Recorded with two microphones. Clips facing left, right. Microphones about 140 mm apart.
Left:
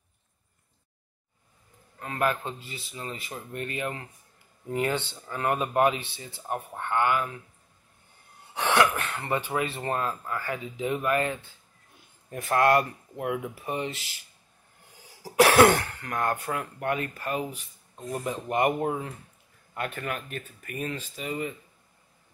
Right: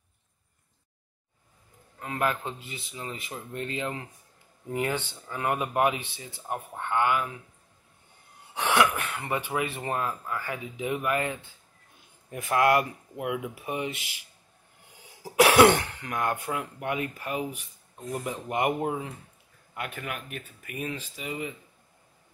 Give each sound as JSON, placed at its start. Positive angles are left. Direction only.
{"t": 2.0, "sound": "speech", "side_deg": -15}
{"t": 8.5, "sound": "cough", "side_deg": -15}
{"t": 8.9, "sound": "speech", "side_deg": -15}
{"t": 13.2, "sound": "speech", "side_deg": 30}
{"t": 13.6, "sound": "speech", "side_deg": -10}
{"t": 15.8, "sound": "speech", "side_deg": -20}
{"t": 19.7, "sound": "speech", "side_deg": -5}